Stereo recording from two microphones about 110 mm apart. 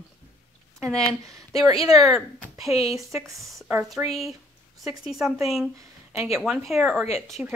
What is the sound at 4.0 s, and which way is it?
Speech, 20° right (ahead or behind).